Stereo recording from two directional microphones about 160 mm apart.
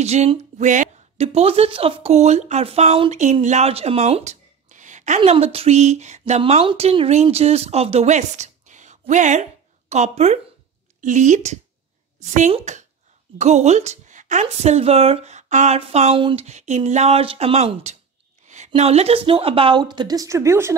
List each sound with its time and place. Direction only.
0.0 s speech: 40° right (ahead or behind)
16.4 s a woman's voice: 45° right (ahead or behind); by 20.7 s 15° right (ahead or behind)